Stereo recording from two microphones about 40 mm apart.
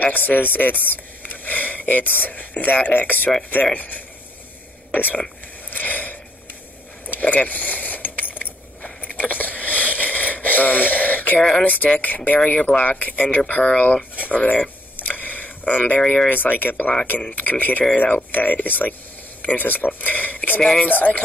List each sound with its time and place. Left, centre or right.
0.0 s speech: left
5.7 s a sound: left
7.1 s vehicle: left
7.4 s a sound: left
11.3 s speech: centre
11.6 s speech: left
12.5 s speech: left
15.0 s a sound: left
16.3 s speech: left